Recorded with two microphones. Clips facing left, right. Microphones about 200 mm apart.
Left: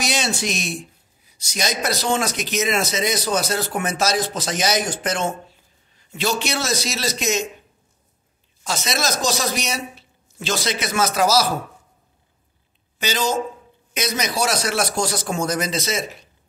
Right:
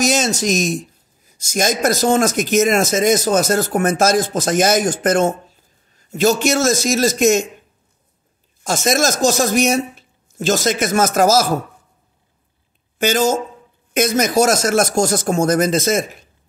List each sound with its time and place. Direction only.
0.0 s a man's voice: 45° right (ahead or behind)
8.6 s a man's voice: 50° right (ahead or behind)
13.0 s a man's voice: 50° right (ahead or behind)